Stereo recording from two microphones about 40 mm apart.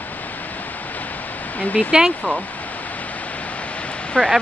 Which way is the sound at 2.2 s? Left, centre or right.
Left.